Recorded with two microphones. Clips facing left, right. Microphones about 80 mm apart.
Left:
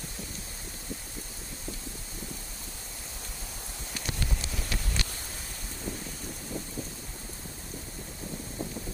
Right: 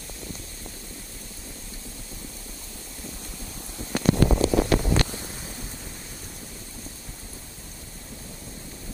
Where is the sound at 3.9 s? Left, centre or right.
Right.